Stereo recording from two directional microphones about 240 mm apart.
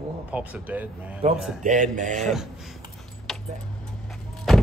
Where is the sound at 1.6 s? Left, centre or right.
Right.